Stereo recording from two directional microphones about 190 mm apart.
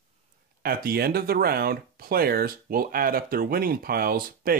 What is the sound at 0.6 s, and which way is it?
Speech, 50° right (ahead or behind).